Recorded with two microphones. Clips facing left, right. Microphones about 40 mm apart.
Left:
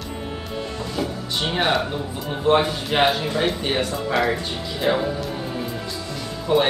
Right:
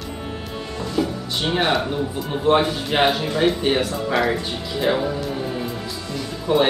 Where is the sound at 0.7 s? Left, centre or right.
Centre.